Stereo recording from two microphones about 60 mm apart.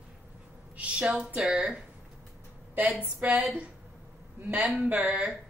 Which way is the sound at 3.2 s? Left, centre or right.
Centre.